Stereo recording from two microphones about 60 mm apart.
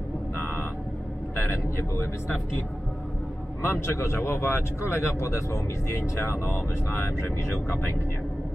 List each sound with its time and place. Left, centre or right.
0.4 s vehicle: left
1.6 s speech: left
3.6 s speech: left